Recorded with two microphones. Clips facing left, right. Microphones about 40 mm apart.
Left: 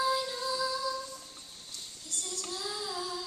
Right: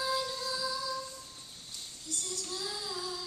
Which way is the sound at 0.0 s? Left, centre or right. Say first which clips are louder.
Left 3 dB; centre.